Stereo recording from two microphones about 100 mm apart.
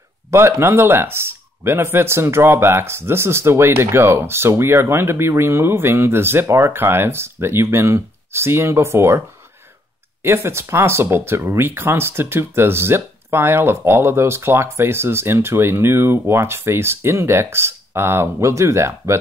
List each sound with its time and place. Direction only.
0.3 s speech: 25° right (ahead or behind)
10.2 s speech: 25° right (ahead or behind)